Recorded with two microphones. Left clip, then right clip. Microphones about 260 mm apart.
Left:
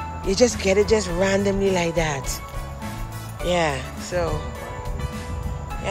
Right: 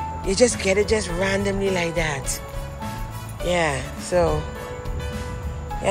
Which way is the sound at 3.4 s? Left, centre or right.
Centre.